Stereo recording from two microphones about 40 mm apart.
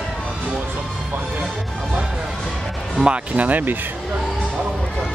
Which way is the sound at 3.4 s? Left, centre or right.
Right.